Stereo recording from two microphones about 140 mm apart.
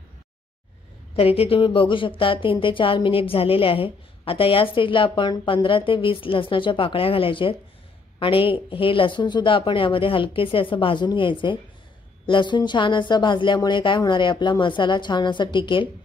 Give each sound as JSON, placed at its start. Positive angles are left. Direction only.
{"t": 1.1, "sound": "a woman's voice", "side_deg": 45}